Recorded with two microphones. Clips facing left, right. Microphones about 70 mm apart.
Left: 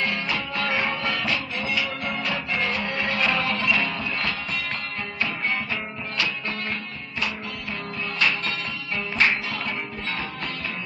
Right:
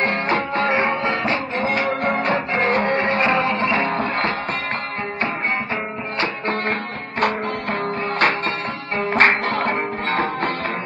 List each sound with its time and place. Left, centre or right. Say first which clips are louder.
0.0 s music: right 7 dB; right
6.1 s music: right 6 dB; right